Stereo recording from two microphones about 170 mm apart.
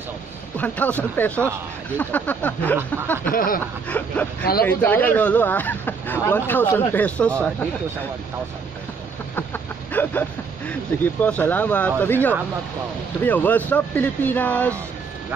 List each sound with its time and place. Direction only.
0.6 s speech: 10° left (ahead or behind)
3.3 s snicker: 55° left (ahead or behind)
3.9 s speech: 10° left (ahead or behind)
9.3 s chicken: 10° left (ahead or behind)
11.2 s speech: 10° left (ahead or behind)